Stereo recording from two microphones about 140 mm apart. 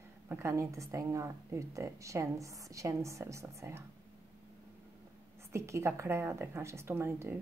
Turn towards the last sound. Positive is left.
turn(degrees=-15)  # may be behind; listen again after turning